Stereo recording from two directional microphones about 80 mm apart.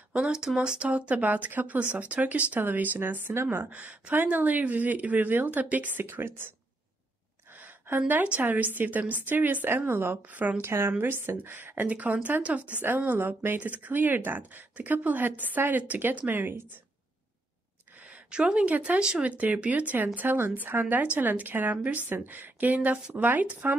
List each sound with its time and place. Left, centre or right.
0.1 s speech: centre; by 6.5 s right
7.5 s a sound: right
8.1 s speech: right
10.6 s speech: right
18.1 s speech: centre